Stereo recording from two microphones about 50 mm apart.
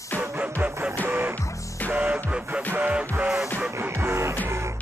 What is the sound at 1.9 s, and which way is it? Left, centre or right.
Music, right.